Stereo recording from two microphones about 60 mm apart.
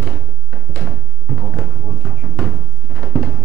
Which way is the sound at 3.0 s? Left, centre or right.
Left.